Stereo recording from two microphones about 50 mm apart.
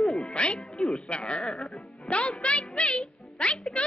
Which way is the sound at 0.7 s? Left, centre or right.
Centre.